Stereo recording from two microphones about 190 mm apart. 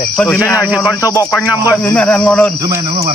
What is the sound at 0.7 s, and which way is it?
Speech, centre (ahead or behind).